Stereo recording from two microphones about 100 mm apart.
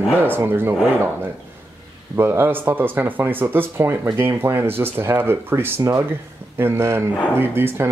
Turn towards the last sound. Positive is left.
turn(degrees=-25)  # may be behind; listen again after turning